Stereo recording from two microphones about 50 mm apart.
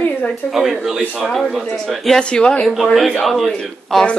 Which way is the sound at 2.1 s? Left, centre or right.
Centre.